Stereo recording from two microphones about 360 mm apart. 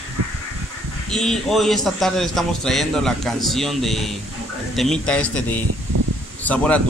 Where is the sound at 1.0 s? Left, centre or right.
Centre.